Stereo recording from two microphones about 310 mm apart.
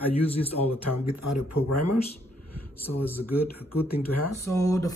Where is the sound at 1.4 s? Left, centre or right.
Left.